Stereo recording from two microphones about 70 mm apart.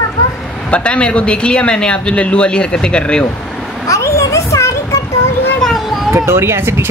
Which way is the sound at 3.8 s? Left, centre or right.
Left.